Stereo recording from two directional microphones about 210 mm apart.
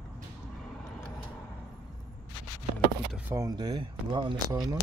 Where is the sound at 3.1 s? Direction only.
5° right (ahead or behind).